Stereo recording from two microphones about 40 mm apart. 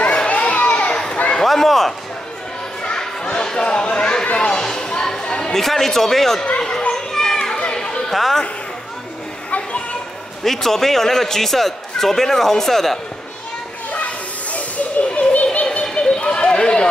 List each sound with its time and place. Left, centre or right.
0.0 s children playing: left
0.9 s a sound: left
1.4 s a sound: centre
2.8 s children playing: left
3.3 s basketball bounce: left
4.5 s chatter: centre
6.9 s children playing: centre
8.1 s speech: centre
9.5 s children playing: left
10.4 s a man's voice: centre
13.9 s children playing: left
15.8 s run: left